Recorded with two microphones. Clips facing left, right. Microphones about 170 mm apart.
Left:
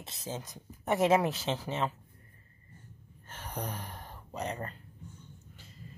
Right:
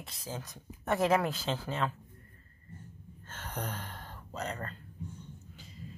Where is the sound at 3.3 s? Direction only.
10° left (ahead or behind).